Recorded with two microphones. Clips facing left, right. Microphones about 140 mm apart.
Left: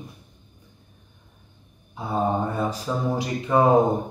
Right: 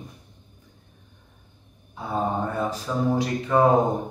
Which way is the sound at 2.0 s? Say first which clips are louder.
Left 2 dB; 15° left (ahead or behind).